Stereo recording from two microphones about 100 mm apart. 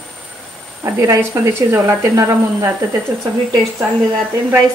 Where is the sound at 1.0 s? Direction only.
30° right (ahead or behind).